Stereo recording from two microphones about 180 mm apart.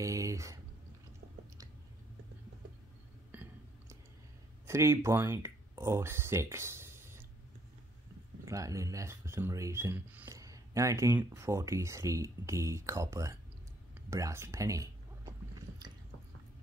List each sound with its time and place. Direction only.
0.0 s speech: 15° right (ahead or behind)
4.6 s speech: 15° right (ahead or behind)
8.5 s speech: 15° right (ahead or behind)
14.1 s chewing: 15° right (ahead or behind)